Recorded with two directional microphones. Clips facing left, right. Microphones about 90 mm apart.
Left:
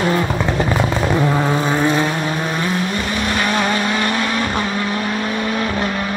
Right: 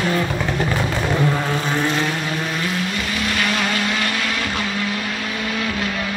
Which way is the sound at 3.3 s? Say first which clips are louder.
Left 4 dB; 30° left (ahead or behind).